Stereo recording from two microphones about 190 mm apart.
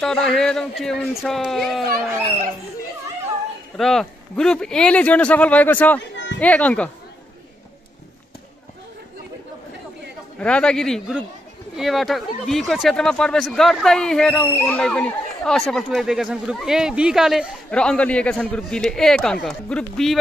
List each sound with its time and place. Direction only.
0.0 s speech: centre (ahead or behind)
3.7 s speech: centre (ahead or behind)
5.9 s a sound: 70° left (ahead or behind)
6.4 s speech: 5° left (ahead or behind)
10.4 s speech: 5° left (ahead or behind)